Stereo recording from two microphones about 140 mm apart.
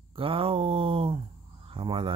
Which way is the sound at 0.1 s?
40° right (ahead or behind).